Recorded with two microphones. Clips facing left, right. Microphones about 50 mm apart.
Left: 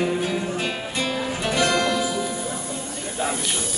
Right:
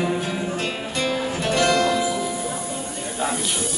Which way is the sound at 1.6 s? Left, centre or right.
Centre.